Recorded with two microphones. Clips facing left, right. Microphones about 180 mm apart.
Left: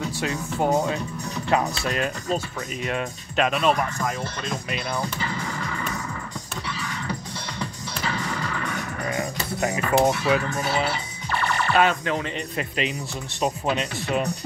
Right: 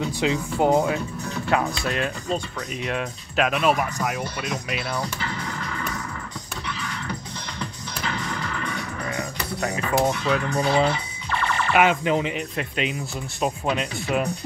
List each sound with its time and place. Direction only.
0.2 s speech: 15° right (ahead or behind)
0.8 s speech: centre (ahead or behind)
8.0 s music: 10° left (ahead or behind)
9.1 s music: 20° left (ahead or behind)
10.0 s speech: 5° left (ahead or behind)
11.7 s speech: 15° right (ahead or behind)
12.5 s speech: centre (ahead or behind)